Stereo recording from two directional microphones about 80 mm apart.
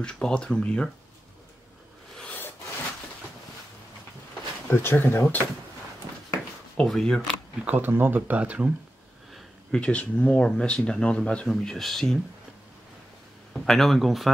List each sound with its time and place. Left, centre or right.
0.0 s speech: centre
4.6 s speech: left
6.8 s speech: centre
7.6 s speech: right
9.3 s speech: centre
11.4 s speech: centre
13.5 s speech: centre